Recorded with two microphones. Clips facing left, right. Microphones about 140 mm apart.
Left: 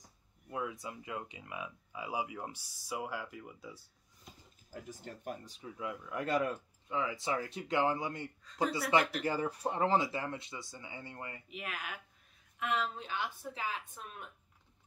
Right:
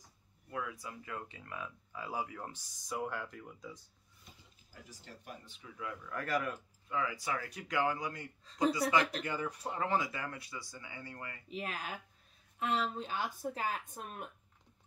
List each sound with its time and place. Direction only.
0.5 s speech: 25° left (ahead or behind); by 3.8 s 5° left (ahead or behind)
4.2 s speech: 50° left (ahead or behind)
5.8 s speech: 20° left (ahead or behind)
11.5 s speech: 35° right (ahead or behind)